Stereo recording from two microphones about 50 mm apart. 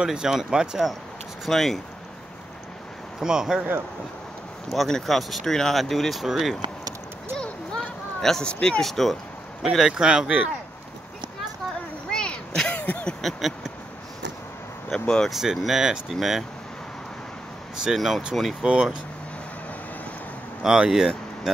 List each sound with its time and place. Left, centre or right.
0.0 s speech: centre
1.5 s speech: centre
3.2 s speech: centre
4.8 s speech: centre
7.7 s a sound: centre
8.5 s speech: centre
8.8 s speech: centre
12.1 s a sound: centre
12.7 s a sound: left
14.9 s speech: centre
15.3 s speech: centre
17.9 s speech: centre
18.6 s speech: centre
20.6 s speech: centre